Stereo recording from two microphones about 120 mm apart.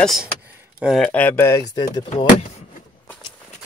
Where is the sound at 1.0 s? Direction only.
15° left (ahead or behind).